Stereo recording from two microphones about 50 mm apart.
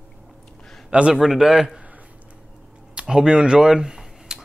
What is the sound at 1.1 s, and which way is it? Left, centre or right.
Speech, centre.